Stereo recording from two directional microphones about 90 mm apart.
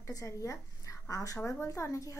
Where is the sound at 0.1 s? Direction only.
35° left (ahead or behind).